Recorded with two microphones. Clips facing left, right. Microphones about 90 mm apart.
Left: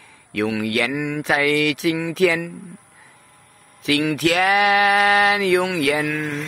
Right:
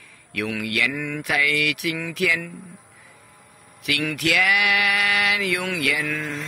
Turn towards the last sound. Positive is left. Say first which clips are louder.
# left 4 dB
turn(degrees=20)  # may be behind; listen again after turning